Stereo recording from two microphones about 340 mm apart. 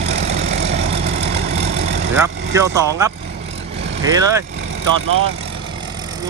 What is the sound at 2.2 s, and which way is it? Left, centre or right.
Speech, centre.